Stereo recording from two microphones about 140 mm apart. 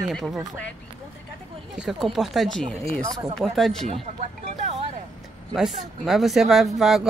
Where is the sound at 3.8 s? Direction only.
50° right (ahead or behind).